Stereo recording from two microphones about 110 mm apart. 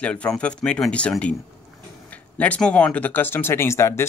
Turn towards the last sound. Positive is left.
turn(degrees=25)  # may be behind; listen again after turning